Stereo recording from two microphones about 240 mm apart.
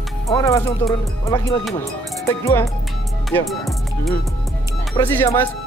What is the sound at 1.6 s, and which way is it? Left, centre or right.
Speech, centre.